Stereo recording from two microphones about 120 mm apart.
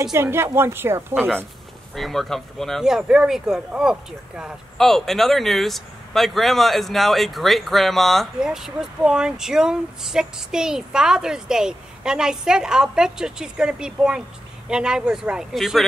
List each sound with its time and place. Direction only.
0.2 s speech: 20° right (ahead or behind)
2.0 s speech: centre (ahead or behind)
4.7 s speech: 5° left (ahead or behind)